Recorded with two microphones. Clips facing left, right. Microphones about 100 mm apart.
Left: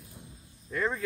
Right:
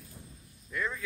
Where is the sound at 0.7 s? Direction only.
35° left (ahead or behind).